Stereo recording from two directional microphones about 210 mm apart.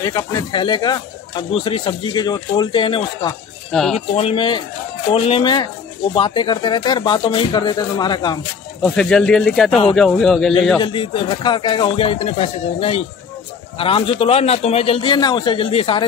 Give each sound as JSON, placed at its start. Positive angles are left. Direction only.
{"t": 0.0, "sound": "speech", "side_deg": 15}
{"t": 8.8, "sound": "speech", "side_deg": 5}
{"t": 10.8, "sound": "speech", "side_deg": 25}